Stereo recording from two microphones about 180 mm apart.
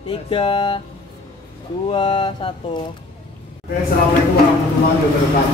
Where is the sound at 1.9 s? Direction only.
30° left (ahead or behind).